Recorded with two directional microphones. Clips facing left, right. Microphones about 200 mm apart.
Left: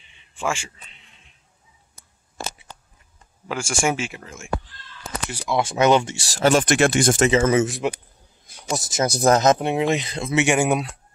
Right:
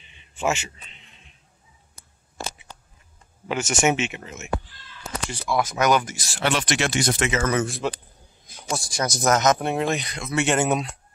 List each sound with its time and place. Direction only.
0.4 s a man's voice: 20° right (ahead or behind)
3.4 s speech: 5° right (ahead or behind)
5.5 s speech: 25° left (ahead or behind); by 7.2 s 50° left (ahead or behind)
7.2 s a man's voice: 25° left (ahead or behind)
9.6 s speech: 15° left (ahead or behind)
10.3 s speech: 10° left (ahead or behind)